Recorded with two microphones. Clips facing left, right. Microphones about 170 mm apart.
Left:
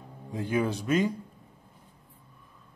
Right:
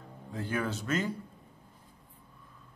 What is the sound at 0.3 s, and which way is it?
Speech, 15° left (ahead or behind).